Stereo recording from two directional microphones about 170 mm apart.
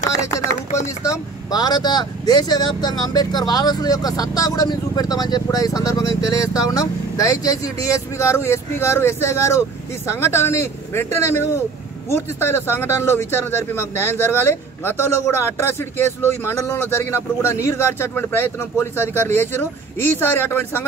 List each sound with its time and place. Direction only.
1.5 s speech: 25° left (ahead or behind)